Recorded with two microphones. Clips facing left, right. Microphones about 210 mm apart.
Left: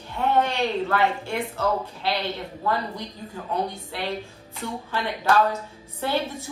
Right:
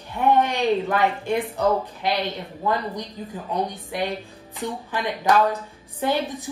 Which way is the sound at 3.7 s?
15° right (ahead or behind).